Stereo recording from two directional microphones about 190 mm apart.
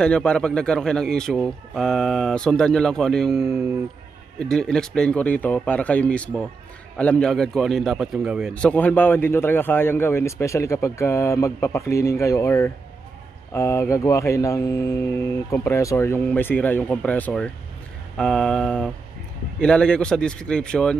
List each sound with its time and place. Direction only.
0.0 s a man's voice: 5° left (ahead or behind)